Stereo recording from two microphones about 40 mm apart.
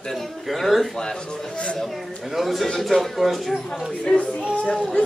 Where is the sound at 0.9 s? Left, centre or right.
Centre.